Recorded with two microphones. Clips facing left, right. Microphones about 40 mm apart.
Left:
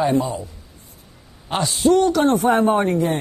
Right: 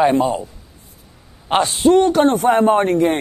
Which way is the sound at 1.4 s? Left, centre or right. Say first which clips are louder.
Right 3 dB; right.